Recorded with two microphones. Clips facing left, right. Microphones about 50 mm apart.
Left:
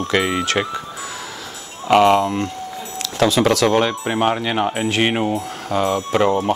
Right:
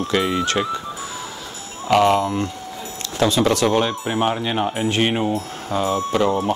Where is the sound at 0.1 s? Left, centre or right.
Left.